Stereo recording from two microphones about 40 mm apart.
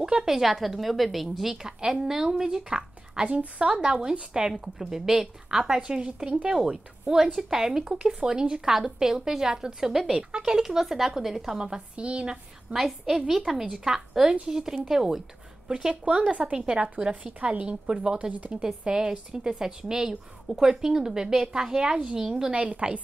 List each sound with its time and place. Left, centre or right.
0.0 s a woman's voice: centre
7.3 s a woman's voice: centre
7.9 s a woman's voice: right
8.6 s a woman's voice: centre
11.9 s a woman's voice: right
12.7 s a woman's voice: centre
16.0 s a woman's voice: right
16.8 s a woman's voice: right
18.3 s speech: right
18.6 s a woman's voice: centre
22.5 s speech: right